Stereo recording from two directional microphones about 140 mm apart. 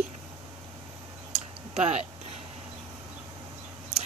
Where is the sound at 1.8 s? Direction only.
50° right (ahead or behind).